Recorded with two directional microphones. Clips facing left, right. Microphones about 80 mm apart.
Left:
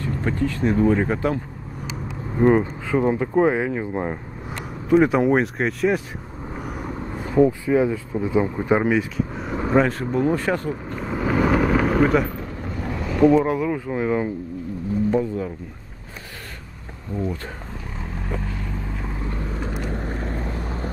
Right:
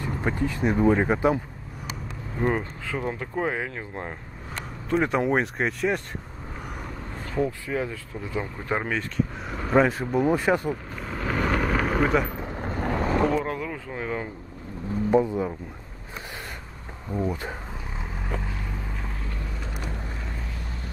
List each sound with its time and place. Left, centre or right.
0.0 s speech: centre
2.3 s speech: centre
4.8 s speech: centre
10.7 s vehicle: centre
12.5 s boat: right
13.3 s a sound: centre
15.0 s speech: centre
17.1 s speech: centre
18.2 s vehicle: centre
19.8 s vehicle: left